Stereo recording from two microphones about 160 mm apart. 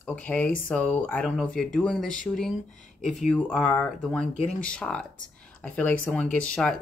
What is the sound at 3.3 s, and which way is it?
Speech, 5° left (ahead or behind).